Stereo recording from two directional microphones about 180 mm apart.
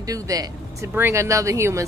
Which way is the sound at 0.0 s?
20° right (ahead or behind).